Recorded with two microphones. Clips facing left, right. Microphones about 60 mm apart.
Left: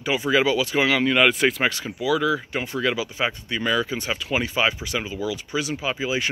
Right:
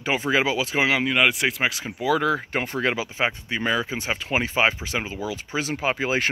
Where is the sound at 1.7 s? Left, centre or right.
Right.